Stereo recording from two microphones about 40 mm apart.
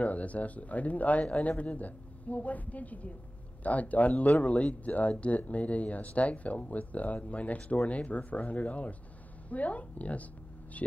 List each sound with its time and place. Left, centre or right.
0.0 s speech: left